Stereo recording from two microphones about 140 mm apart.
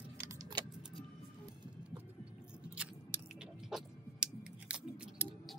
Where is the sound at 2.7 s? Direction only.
10° right (ahead or behind).